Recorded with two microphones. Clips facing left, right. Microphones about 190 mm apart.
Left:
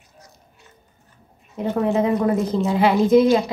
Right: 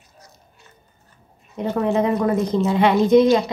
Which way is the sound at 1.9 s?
5° left (ahead or behind).